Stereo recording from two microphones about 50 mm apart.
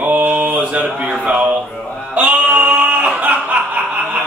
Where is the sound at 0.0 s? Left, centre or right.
Right.